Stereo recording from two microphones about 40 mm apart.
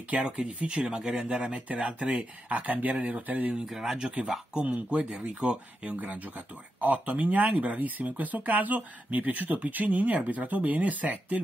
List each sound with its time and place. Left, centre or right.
0.1 s speech: right
3.6 s speech: centre
4.8 s speech: right
5.8 s speech: right